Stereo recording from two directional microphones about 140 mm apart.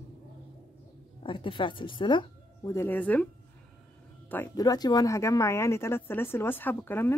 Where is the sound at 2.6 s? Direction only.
20° left (ahead or behind).